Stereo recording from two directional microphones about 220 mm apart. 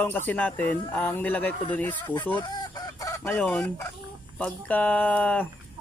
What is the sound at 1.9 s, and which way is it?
Speech, 20° left (ahead or behind).